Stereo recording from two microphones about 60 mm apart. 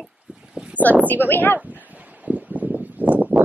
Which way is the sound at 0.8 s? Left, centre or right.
Right.